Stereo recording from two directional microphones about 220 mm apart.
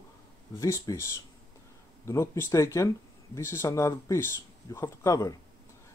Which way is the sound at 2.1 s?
10° left (ahead or behind).